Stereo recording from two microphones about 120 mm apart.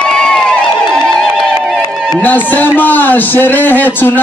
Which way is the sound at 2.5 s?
15° left (ahead or behind).